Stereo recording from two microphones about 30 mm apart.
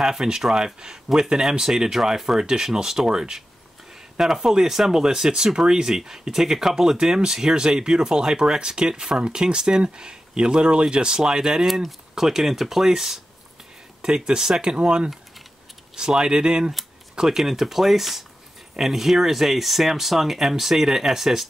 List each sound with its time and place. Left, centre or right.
0.0 s speech: centre
11.6 s speech: centre
14.0 s speech: right
16.2 s speech: right
17.4 s speech: centre